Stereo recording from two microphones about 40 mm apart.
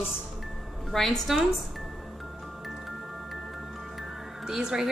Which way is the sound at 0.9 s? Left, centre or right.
Centre.